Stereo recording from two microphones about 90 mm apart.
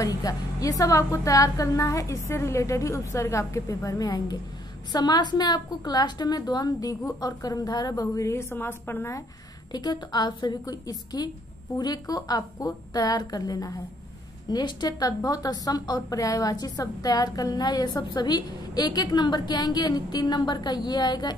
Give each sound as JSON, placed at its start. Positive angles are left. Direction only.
{"t": 0.0, "sound": "a woman's voice", "side_deg": 40}
{"t": 9.7, "sound": "a woman's voice", "side_deg": 55}
{"t": 14.5, "sound": "a woman's voice", "side_deg": 55}